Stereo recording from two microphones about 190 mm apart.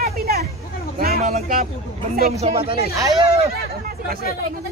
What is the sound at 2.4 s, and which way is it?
Speech, 30° right (ahead or behind).